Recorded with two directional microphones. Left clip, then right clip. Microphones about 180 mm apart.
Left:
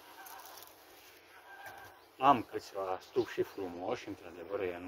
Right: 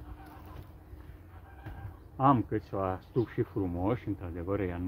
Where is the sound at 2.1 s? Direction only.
15° left (ahead or behind).